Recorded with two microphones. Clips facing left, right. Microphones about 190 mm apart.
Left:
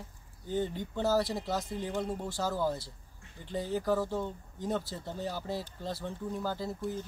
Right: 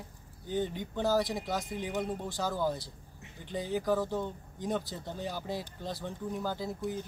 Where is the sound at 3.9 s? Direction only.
Centre (ahead or behind).